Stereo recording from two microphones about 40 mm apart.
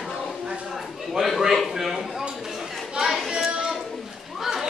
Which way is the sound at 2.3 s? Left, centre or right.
Centre.